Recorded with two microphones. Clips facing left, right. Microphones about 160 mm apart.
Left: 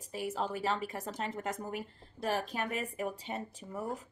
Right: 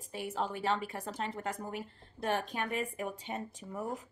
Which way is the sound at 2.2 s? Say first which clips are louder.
Even; 40° left (ahead or behind).